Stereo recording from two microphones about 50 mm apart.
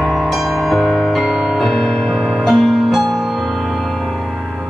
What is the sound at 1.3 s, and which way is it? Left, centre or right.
Music, centre.